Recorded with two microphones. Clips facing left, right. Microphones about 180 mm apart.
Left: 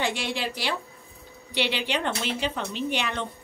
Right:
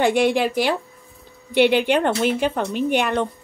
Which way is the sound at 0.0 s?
55° right (ahead or behind).